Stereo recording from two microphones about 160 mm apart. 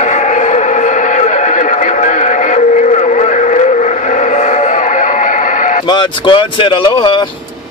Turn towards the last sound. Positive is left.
turn(degrees=30)  # may be behind; listen again after turning